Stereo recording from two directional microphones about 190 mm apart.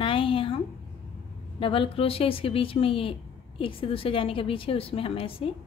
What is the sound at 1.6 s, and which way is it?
Speech, 30° left (ahead or behind).